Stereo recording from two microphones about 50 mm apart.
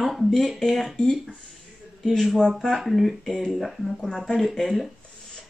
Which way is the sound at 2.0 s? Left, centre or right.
Centre.